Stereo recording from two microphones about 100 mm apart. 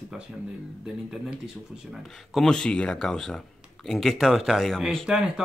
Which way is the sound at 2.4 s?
5° left (ahead or behind).